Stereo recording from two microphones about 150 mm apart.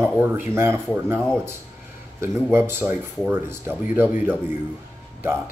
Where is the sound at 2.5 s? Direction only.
15° right (ahead or behind).